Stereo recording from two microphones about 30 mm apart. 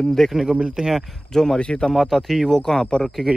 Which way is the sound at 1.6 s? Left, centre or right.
Left.